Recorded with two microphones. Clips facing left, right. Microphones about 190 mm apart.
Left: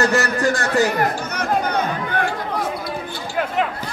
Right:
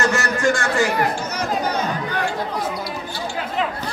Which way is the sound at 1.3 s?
55° left (ahead or behind).